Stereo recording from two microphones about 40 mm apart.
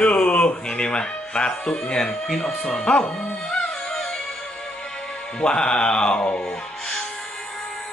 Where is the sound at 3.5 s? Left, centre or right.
Centre.